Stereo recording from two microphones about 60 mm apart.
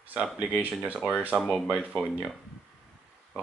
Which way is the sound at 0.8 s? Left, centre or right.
Right.